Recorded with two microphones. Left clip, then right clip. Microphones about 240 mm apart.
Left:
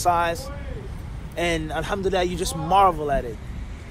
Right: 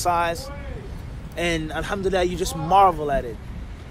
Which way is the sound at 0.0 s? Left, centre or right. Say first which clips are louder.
Left 1 dB; centre.